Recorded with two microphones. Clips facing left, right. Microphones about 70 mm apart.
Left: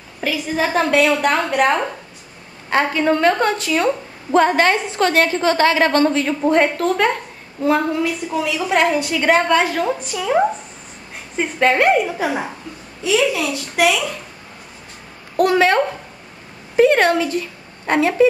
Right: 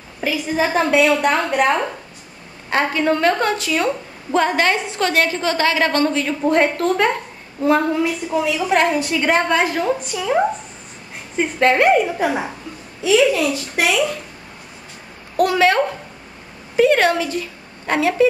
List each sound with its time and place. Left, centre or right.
0.2 s a woman's voice: centre
4.9 s a woman's voice: left
5.9 s a woman's voice: centre
15.3 s a woman's voice: centre